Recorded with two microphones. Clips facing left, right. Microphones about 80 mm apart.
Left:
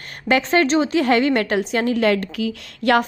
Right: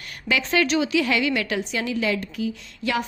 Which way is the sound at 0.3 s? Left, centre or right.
Left.